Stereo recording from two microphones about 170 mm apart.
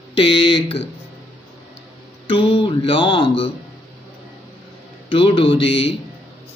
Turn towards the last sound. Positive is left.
turn(degrees=35)  # may be behind; listen again after turning